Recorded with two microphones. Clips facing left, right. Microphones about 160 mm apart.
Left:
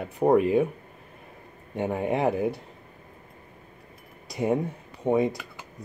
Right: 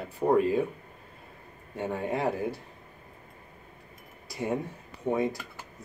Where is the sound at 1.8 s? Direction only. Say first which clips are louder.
Left 4 dB; 20° left (ahead or behind).